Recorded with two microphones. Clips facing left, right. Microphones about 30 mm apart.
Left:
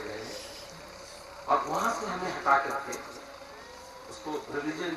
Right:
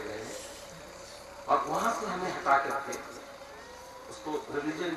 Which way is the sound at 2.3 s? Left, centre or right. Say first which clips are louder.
Left 1 dB; centre.